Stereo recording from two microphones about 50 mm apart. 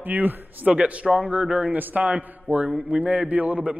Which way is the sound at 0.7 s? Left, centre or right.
Right.